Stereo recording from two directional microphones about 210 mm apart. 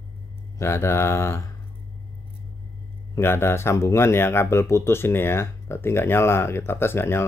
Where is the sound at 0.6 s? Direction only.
10° left (ahead or behind).